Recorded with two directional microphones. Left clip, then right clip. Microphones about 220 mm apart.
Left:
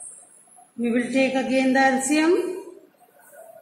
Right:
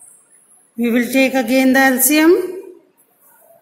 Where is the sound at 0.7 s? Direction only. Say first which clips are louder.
Right 7 dB; 50° right (ahead or behind).